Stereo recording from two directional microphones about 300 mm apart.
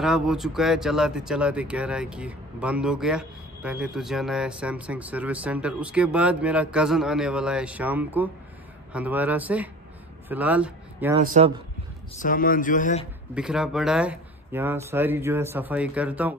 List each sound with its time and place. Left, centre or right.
0.0 s speech: centre
11.1 s speech: centre
12.2 s speech: left
13.3 s speech: centre